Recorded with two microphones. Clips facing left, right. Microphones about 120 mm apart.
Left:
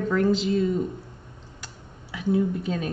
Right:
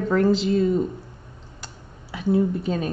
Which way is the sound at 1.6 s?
35° right (ahead or behind).